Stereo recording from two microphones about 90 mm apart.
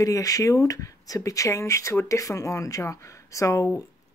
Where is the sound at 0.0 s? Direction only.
40° left (ahead or behind).